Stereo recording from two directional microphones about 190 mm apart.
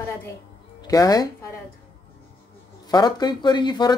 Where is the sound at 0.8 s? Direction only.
20° left (ahead or behind).